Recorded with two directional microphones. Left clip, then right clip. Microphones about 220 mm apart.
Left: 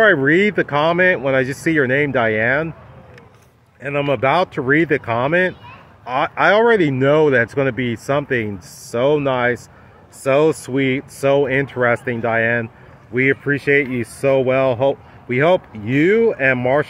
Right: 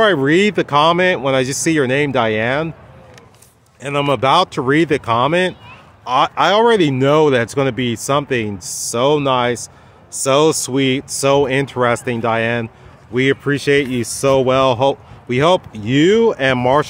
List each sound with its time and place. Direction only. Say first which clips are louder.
0.0 s speech: even; 20° right (ahead or behind)
3.8 s speech: right 2 dB; 25° right (ahead or behind)